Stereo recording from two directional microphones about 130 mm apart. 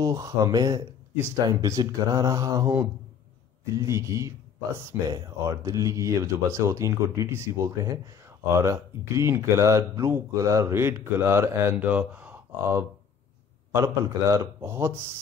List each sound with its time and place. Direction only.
0.0 s speech: 25° right (ahead or behind)
3.7 s speech: 25° right (ahead or behind)